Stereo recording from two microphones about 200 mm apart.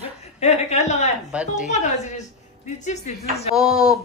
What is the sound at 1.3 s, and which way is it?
Speech, 5° right (ahead or behind).